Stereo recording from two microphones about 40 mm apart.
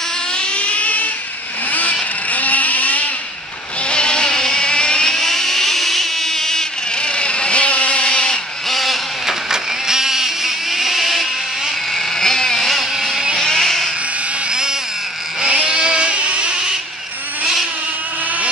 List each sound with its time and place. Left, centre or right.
0.3 s a sound: left
1.7 s vehicle: left
3.8 s vehicle: left
7.0 s vehicle: left
8.1 s vehicle: centre
8.6 s vehicle: centre
11.9 s vehicle: centre
14.5 s a sound: centre